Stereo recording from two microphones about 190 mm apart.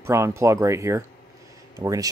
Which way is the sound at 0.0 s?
15° right (ahead or behind).